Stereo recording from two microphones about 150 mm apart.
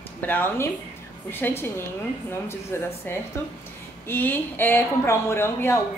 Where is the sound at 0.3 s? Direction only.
15° left (ahead or behind).